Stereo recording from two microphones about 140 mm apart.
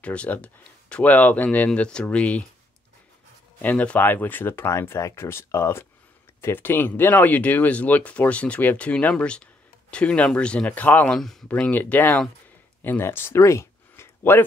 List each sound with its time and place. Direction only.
0.0 s speech: 10° left (ahead or behind)
3.6 s speech: 10° left (ahead or behind)